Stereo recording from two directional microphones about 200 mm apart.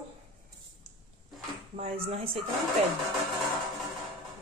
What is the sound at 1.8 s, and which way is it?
Speech, 30° right (ahead or behind).